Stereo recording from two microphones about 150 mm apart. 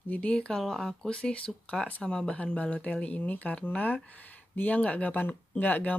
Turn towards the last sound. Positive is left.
turn(degrees=10)  # may be behind; listen again after turning